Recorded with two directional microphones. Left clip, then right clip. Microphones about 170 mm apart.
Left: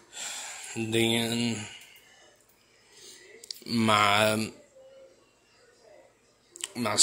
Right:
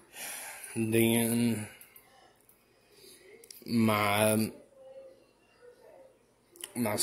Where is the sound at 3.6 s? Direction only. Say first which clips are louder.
Left 5 dB; 10° right (ahead or behind).